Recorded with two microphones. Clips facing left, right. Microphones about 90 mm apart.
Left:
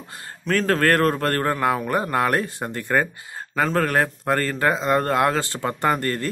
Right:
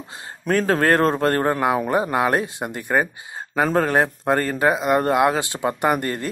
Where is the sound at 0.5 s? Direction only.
20° right (ahead or behind).